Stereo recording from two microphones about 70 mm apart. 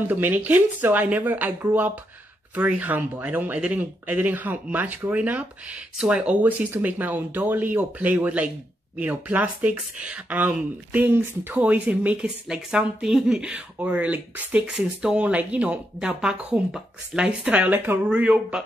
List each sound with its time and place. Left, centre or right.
0.1 s speech: right
17.5 s speech: right